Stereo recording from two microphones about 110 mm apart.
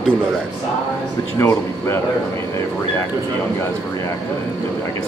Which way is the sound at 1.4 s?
25° left (ahead or behind).